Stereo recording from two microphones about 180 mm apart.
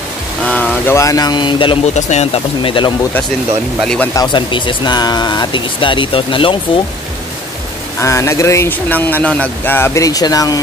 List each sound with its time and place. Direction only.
0.5 s speech: 10° left (ahead or behind); by 1.8 s 25° left (ahead or behind)
2.0 s speech: 40° left (ahead or behind)
3.8 s speech: 5° left (ahead or behind)
4.1 s speech: 25° left (ahead or behind)
8.0 s speech: 15° left (ahead or behind)